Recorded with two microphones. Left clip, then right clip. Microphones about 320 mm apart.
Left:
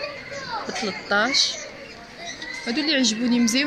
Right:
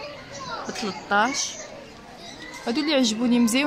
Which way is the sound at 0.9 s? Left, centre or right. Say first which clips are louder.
Right 1 dB; centre.